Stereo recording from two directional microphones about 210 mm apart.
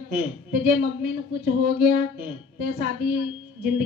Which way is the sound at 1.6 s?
45° right (ahead or behind).